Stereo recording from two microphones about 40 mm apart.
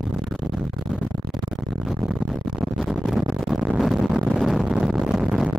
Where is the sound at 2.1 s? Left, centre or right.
Centre.